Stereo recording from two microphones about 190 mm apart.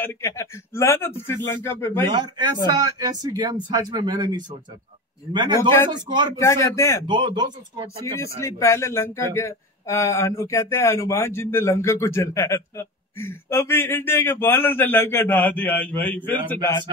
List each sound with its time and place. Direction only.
0.0 s speech: 15° left (ahead or behind)
2.1 s speech: 20° right (ahead or behind)
5.6 s speech: 15° left (ahead or behind)
5.9 s speech: 20° right (ahead or behind)
6.3 s speech: 15° left (ahead or behind)
7.1 s speech: 25° right (ahead or behind)
8.0 s speech: 15° left (ahead or behind)